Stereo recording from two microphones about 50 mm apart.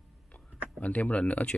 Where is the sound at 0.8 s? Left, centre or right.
Left.